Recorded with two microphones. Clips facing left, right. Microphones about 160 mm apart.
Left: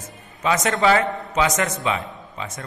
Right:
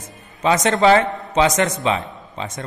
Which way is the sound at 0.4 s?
30° right (ahead or behind).